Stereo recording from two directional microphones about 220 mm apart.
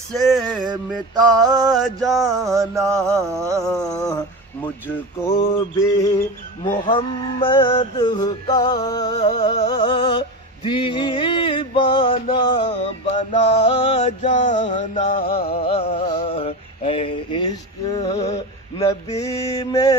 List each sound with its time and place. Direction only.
0.1 s music: centre (ahead or behind)
1.1 s music: 20° right (ahead or behind)
2.0 s music: centre (ahead or behind)
2.9 s mantra: 15° right (ahead or behind)
3.6 s music: 5° left (ahead or behind)
9.1 s music: 30° left (ahead or behind); by 15.6 s 45° left (ahead or behind)
15.6 s music: 25° left (ahead or behind)
19.5 s music: 15° left (ahead or behind)